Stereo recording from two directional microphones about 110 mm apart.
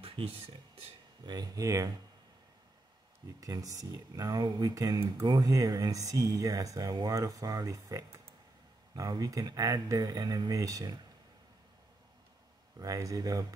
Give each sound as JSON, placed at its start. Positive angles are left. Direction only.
{"t": 0.0, "sound": "a sound", "side_deg": -55}
{"t": 1.2, "sound": "speech", "side_deg": -35}
{"t": 3.3, "sound": "speech", "side_deg": -35}
{"t": 12.7, "sound": "speech", "side_deg": -30}